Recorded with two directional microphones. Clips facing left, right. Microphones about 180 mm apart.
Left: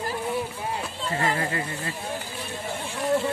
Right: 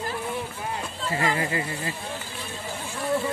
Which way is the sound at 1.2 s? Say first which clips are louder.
Right 1 dB; 10° right (ahead or behind).